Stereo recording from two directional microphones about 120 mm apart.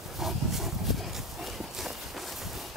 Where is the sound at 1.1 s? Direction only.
Centre (ahead or behind).